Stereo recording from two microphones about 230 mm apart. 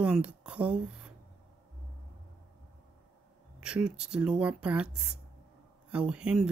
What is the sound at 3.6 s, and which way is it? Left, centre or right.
Speech, centre.